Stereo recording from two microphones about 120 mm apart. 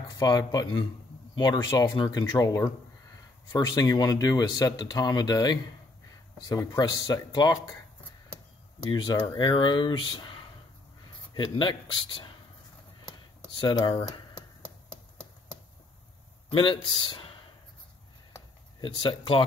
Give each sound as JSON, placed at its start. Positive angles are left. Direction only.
{"t": 0.3, "sound": "speech", "side_deg": 35}
{"t": 8.9, "sound": "speech", "side_deg": 40}
{"t": 13.0, "sound": "a sound", "side_deg": 40}
{"t": 16.5, "sound": "speech", "side_deg": 45}
{"t": 18.8, "sound": "speech", "side_deg": 45}